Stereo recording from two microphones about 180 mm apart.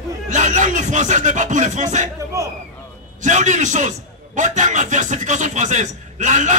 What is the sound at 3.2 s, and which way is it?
A man's voice, 40° right (ahead or behind).